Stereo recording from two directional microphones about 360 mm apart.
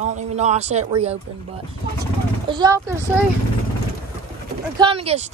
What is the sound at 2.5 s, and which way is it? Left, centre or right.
Speech, centre.